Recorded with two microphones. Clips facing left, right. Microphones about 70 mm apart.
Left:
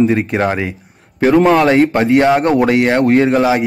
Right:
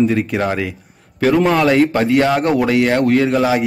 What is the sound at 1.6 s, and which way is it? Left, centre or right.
Speech, left.